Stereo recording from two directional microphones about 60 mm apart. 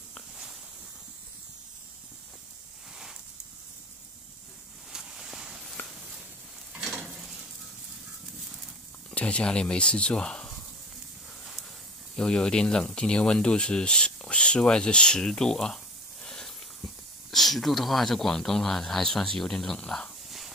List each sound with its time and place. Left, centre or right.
4.9 s ocean: centre
5.8 s a sound: left
7.1 s stir: centre
9.1 s speech: centre
12.2 s speech: centre
20.2 s a sound: centre